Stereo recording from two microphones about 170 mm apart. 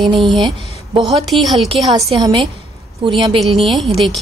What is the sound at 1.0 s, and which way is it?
Speech, centre (ahead or behind).